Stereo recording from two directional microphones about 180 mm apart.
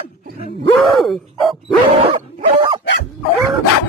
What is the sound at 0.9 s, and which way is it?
Bow-wow, centre (ahead or behind).